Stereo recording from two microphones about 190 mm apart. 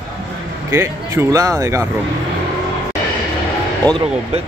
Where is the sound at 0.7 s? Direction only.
15° right (ahead or behind).